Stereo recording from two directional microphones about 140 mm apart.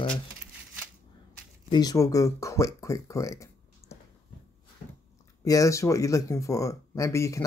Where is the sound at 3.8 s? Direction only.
50° left (ahead or behind).